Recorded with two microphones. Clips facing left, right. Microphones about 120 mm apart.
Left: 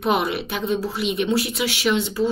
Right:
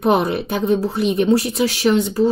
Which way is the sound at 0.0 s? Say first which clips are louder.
Right 5 dB; 35° right (ahead or behind).